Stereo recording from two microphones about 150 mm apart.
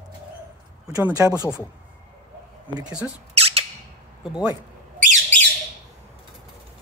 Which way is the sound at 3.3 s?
40° right (ahead or behind).